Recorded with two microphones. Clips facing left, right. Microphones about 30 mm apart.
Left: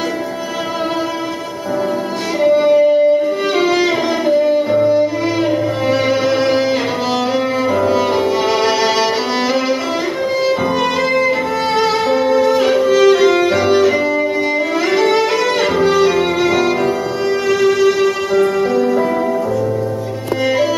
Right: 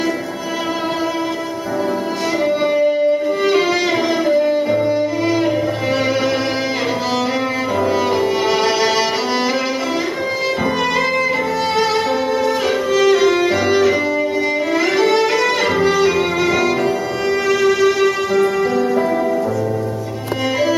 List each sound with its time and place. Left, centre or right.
2.4 s music: centre
7.8 s music: centre
11.7 s violin: centre
14.9 s music: centre